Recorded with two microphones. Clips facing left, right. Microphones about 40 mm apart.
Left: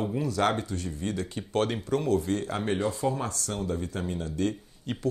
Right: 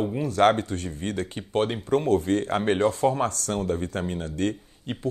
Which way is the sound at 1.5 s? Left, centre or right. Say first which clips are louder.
Right 2 dB; right.